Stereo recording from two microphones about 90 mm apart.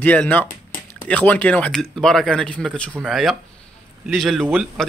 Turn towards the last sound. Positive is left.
turn(degrees=5)  # may be behind; listen again after turning